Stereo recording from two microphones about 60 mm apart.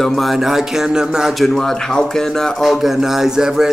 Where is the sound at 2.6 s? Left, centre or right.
Centre.